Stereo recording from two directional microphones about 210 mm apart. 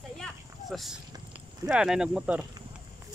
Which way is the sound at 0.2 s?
Centre (ahead or behind).